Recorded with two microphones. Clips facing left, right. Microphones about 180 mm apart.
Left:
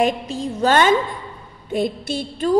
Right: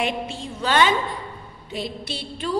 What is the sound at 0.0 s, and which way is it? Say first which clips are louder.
A woman's voice: left 6 dB; 40° left (ahead or behind).